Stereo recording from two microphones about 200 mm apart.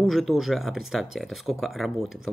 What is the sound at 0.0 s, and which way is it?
Speech, centre (ahead or behind).